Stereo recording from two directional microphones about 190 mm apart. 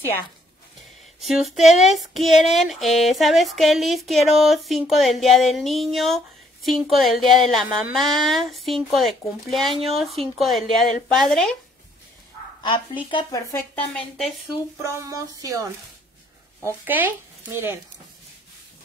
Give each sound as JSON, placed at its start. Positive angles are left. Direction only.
{"t": 1.2, "sound": "female singing", "side_deg": 0}
{"t": 13.1, "sound": "speech", "side_deg": 20}
{"t": 13.9, "sound": "female singing", "side_deg": 0}
{"t": 14.8, "sound": "speech", "side_deg": -15}
{"t": 16.8, "sound": "speech", "side_deg": -10}